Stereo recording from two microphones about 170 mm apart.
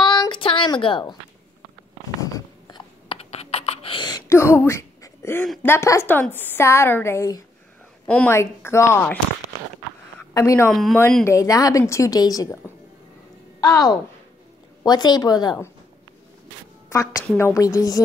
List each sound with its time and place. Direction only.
0.0 s a sound: 25° left (ahead or behind)
2.3 s a sound: 30° left (ahead or behind)
4.3 s a woman's voice: 15° left (ahead or behind)
8.1 s a woman's voice: 5° left (ahead or behind)
8.4 s a woman's voice: 15° left (ahead or behind)
10.3 s a woman's voice: 20° left (ahead or behind)
10.7 s a woman's voice: centre (ahead or behind); by 15.7 s 20° left (ahead or behind)
16.9 s a woman's voice: 20° left (ahead or behind)